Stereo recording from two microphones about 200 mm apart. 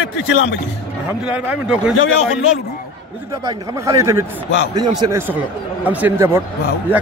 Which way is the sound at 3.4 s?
15° right (ahead or behind).